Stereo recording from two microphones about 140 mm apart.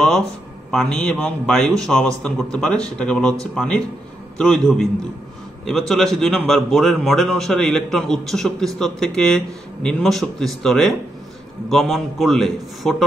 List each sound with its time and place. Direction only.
0.7 s a man's voice: 5° left (ahead or behind)